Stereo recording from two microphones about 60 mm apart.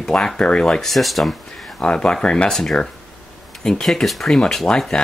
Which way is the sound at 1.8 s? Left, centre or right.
Centre.